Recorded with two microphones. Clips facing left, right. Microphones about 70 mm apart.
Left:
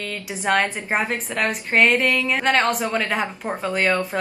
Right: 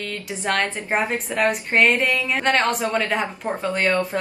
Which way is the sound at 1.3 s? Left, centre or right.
Centre.